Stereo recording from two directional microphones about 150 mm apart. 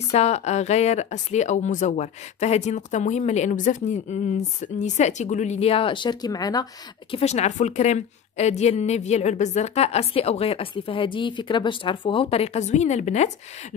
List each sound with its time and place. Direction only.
0.1 s a woman's voice: 45° left (ahead or behind); by 7.2 s 25° left (ahead or behind)
7.2 s a woman's voice: 45° left (ahead or behind)